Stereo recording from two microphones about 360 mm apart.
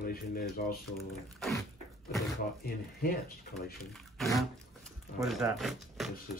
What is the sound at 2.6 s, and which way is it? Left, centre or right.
Speech, left.